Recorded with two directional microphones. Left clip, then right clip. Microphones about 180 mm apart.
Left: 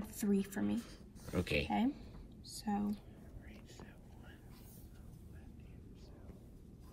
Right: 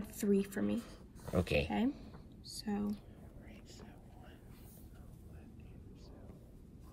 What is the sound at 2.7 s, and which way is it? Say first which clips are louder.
Speech: left 2 dB; centre (ahead or behind).